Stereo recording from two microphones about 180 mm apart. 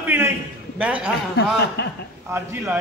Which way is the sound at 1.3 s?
65° left (ahead or behind).